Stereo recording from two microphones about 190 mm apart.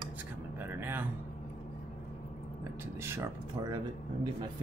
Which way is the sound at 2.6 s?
15° right (ahead or behind).